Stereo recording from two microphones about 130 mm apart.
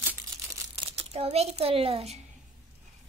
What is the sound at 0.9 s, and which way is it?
A child's voice, 55° right (ahead or behind).